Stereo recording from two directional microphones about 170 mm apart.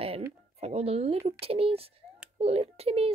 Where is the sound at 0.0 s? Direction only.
35° right (ahead or behind).